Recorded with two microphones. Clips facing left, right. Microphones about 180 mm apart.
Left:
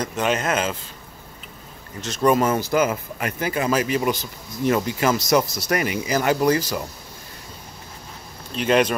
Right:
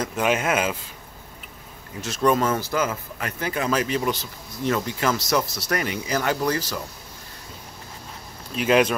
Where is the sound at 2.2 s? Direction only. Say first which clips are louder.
Left 2 dB; 15° left (ahead or behind).